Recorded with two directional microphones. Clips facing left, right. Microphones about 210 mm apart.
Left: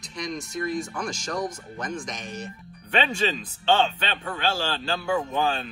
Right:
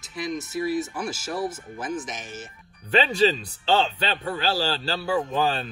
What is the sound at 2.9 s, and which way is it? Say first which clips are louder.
Speech: right 4 dB; 40° right (ahead or behind).